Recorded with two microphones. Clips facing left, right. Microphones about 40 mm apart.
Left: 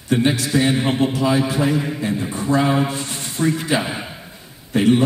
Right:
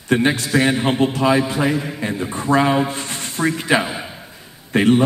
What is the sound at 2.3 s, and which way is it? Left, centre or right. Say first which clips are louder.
A man's voice: right 3 dB; right.